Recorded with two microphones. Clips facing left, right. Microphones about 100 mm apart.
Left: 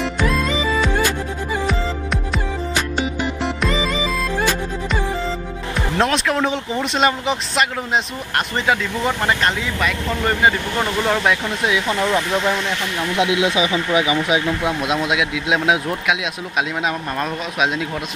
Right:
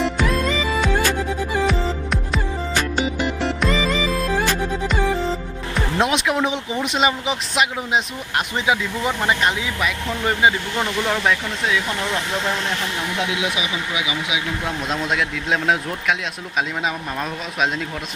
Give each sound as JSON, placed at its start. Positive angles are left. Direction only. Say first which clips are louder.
{"t": 1.7, "sound": "music", "louder": "even", "side_deg": 0}
{"t": 5.8, "sound": "speech", "louder": "left 1 dB", "side_deg": -10}
{"t": 10.8, "sound": "speech", "louder": "left 3 dB", "side_deg": 5}
{"t": 13.2, "sound": "speech", "louder": "left 8 dB", "side_deg": 20}
{"t": 14.6, "sound": "speech", "louder": "left 4 dB", "side_deg": 10}